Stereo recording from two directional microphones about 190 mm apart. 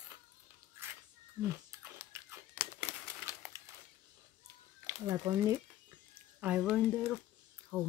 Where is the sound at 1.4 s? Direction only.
15° right (ahead or behind).